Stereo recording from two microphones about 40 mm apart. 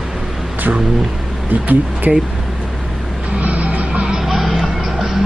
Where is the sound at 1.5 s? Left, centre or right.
Right.